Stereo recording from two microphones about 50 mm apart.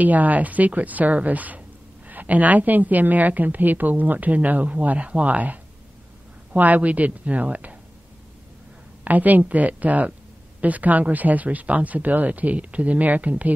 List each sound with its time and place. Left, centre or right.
0.0 s a woman's voice: right
9.0 s a woman's voice: right